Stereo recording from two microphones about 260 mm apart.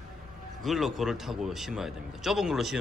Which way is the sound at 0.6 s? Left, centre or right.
Centre.